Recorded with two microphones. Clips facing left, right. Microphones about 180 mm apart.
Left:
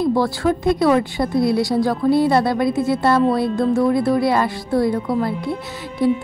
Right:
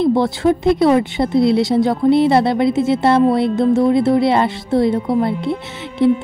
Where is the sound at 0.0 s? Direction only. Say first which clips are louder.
Right 3 dB; 25° right (ahead or behind).